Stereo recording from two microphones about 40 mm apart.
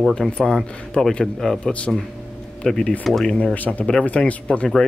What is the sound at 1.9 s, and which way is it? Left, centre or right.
Rub, centre.